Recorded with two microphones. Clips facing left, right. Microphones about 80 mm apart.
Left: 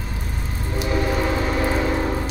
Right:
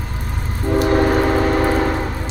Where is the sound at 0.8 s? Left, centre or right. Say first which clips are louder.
Right 6 dB; right.